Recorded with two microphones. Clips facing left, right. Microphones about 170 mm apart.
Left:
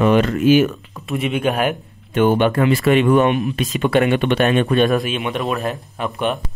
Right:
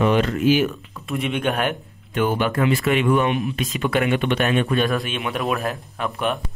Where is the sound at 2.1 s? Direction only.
25° left (ahead or behind).